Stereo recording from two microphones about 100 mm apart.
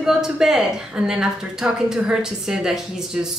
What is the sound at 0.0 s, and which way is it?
A woman's voice, 5° right (ahead or behind).